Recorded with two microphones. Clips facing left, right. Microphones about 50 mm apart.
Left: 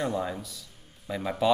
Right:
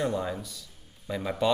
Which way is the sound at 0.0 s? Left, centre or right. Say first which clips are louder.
Even; centre.